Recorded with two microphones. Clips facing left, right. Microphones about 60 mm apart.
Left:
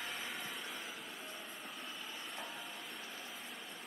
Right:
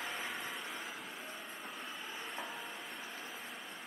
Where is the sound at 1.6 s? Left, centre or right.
Centre.